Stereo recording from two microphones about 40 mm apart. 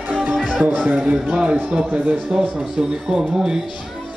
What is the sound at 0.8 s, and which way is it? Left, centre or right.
Speech, right.